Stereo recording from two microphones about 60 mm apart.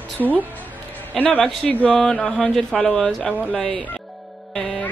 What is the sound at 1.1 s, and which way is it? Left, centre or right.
Speech, centre.